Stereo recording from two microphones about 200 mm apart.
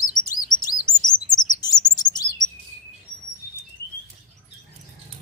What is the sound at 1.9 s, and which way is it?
Chirp, 20° left (ahead or behind).